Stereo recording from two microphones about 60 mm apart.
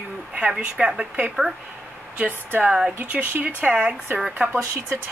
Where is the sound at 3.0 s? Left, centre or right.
Right.